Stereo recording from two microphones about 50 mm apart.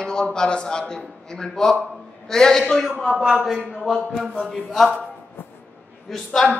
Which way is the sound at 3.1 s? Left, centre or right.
Centre.